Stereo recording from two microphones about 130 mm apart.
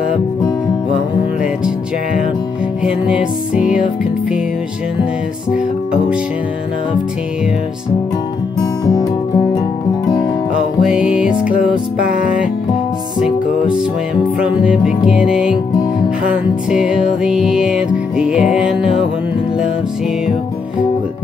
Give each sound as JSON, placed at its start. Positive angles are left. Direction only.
{"t": 2.8, "sound": "music", "side_deg": -5}
{"t": 8.5, "sound": "music", "side_deg": 30}
{"t": 10.8, "sound": "music", "side_deg": -5}